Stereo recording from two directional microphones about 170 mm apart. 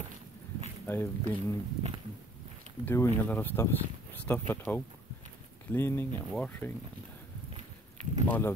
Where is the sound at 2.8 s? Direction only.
15° left (ahead or behind).